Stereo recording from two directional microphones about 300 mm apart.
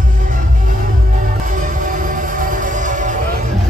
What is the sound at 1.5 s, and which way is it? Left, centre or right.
Music, right.